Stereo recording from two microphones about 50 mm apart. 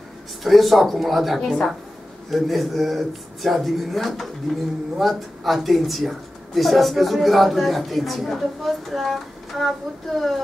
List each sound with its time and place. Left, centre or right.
0.4 s speech: centre